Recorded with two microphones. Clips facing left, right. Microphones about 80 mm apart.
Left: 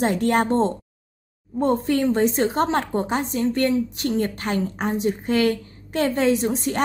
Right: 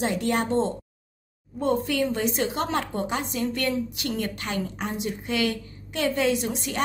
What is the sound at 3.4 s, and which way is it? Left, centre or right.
Speech, left.